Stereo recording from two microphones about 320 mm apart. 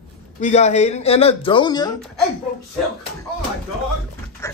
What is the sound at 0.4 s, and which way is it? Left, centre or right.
Speech, left.